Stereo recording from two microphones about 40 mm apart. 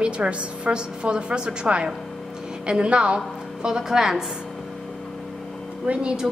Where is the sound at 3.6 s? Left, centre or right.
Centre.